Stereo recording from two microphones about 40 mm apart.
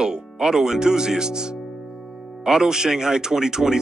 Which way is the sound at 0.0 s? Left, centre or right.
Centre.